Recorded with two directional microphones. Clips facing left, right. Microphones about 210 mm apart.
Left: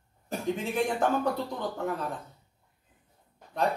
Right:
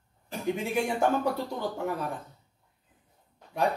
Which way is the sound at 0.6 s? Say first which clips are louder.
Right 1 dB; 10° right (ahead or behind).